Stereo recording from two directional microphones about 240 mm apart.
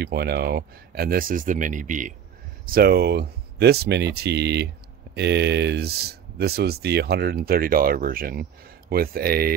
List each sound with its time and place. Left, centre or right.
0.0 s speech: right